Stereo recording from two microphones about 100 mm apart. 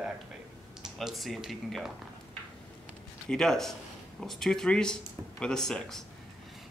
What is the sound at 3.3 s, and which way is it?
Speech, 5° left (ahead or behind).